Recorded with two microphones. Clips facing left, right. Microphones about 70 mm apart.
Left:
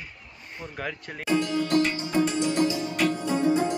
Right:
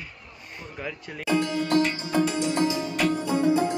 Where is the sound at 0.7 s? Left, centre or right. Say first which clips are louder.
Left 1 dB; left.